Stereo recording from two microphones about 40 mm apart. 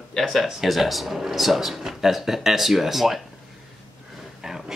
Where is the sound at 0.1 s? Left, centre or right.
Centre.